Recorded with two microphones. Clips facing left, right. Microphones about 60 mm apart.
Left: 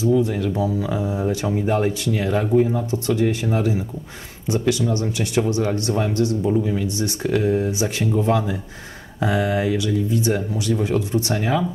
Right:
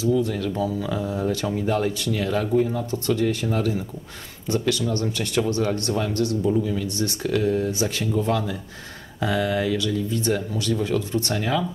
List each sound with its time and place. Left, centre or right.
0.0 s speech: left